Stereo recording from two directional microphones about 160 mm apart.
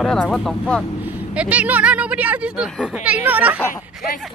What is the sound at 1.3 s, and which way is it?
Speech, 10° right (ahead or behind).